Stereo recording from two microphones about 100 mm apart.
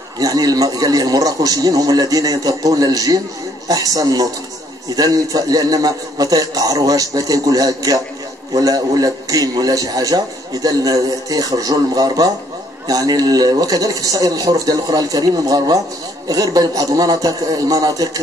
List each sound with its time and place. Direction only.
0.2 s a man's voice: 40° right (ahead or behind)